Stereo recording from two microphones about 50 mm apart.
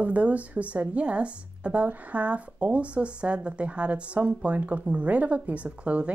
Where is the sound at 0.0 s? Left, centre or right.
Right.